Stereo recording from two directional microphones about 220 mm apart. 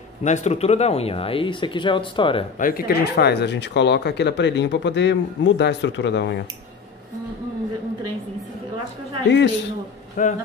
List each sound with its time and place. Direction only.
0.2 s speech: 30° left (ahead or behind)
2.6 s speech: 45° left (ahead or behind)
10.2 s speech: 35° left (ahead or behind)